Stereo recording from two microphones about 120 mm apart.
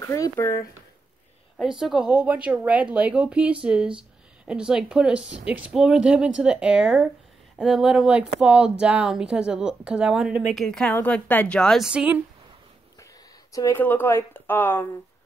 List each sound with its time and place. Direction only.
0.1 s speech: 25° left (ahead or behind)
1.6 s speech: 5° right (ahead or behind)
10.5 s a woman's voice: 5° left (ahead or behind)
11.9 s speech: 10° right (ahead or behind)
13.5 s speech: 30° left (ahead or behind)
13.7 s a woman's voice: 15° left (ahead or behind)